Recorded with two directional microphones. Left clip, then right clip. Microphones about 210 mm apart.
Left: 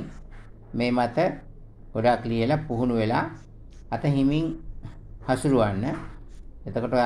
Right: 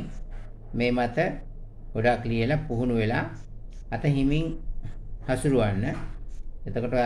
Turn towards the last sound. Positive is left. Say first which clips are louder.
# left 2 dB
turn(degrees=10)  # may be behind; listen again after turning